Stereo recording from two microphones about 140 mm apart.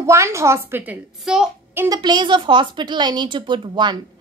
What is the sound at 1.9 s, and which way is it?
A woman's voice, 30° right (ahead or behind).